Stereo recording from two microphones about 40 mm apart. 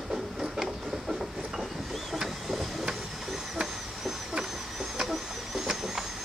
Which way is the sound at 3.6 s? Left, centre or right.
Centre.